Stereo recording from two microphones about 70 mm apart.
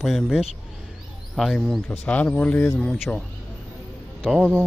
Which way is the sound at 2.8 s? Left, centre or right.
Centre.